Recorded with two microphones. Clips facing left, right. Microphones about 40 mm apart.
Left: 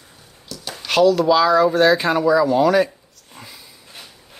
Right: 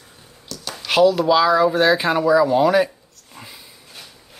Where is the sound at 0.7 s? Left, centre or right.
Centre.